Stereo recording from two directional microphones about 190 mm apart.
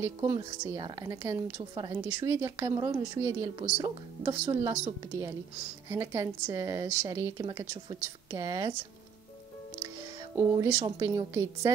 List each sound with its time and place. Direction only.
0.0 s a woman's voice: 20° right (ahead or behind)
5.9 s a woman's voice: 15° right (ahead or behind)
10.3 s a woman's voice: 15° right (ahead or behind)